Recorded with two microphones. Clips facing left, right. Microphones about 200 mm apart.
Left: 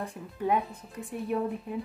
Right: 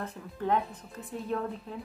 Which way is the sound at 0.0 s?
15° left (ahead or behind).